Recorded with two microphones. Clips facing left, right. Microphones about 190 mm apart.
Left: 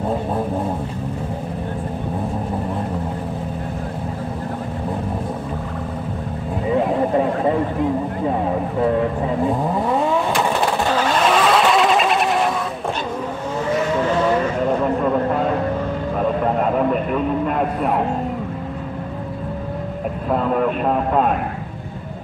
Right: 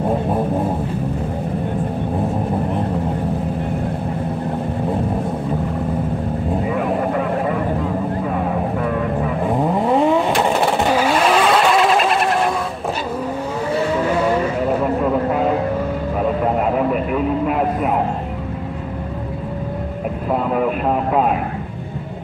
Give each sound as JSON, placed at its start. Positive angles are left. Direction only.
{"t": 6.7, "sound": "vehicle", "side_deg": 25}
{"t": 9.8, "sound": "vehicle", "side_deg": -20}
{"t": 14.7, "sound": "vehicle", "side_deg": -5}
{"t": 20.2, "sound": "vehicle", "side_deg": -5}